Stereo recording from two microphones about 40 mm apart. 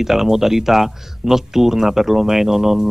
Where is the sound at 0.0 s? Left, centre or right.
Centre.